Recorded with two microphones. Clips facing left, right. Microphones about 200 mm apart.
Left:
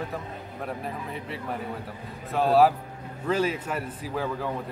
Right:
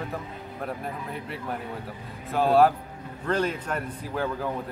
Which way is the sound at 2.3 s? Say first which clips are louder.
Even; centre (ahead or behind).